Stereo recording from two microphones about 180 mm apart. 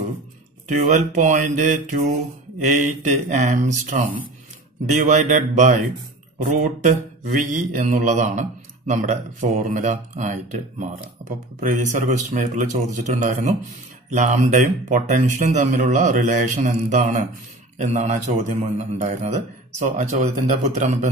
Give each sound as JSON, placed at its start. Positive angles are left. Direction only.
{"t": 0.7, "sound": "a man's voice", "side_deg": -45}